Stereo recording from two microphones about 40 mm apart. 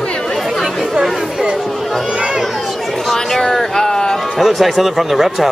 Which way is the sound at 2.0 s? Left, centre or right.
Right.